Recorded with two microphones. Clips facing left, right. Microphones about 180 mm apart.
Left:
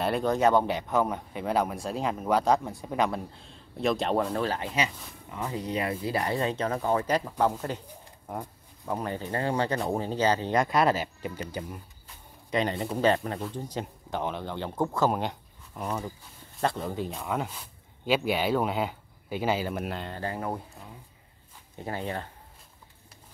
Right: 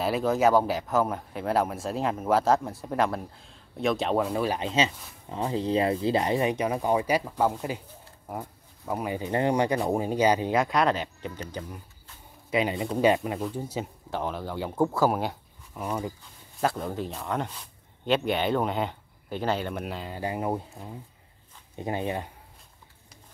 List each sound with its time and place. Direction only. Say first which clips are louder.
0.0 s speech: right 1 dB; 5° right (ahead or behind)
4.5 s speech: right 3 dB; 20° right (ahead or behind)
10.6 s speech: even; 5° left (ahead or behind)
12.4 s speech: right 2 dB; 5° right (ahead or behind)
13.0 s speech: right 2 dB; 10° right (ahead or behind)
20.2 s speech: right 6 dB; 15° right (ahead or behind)